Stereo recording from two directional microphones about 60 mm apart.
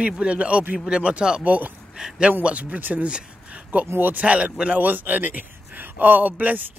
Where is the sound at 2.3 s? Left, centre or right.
Right.